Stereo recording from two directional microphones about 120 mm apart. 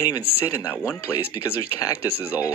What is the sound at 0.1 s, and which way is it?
Speech, 25° left (ahead or behind).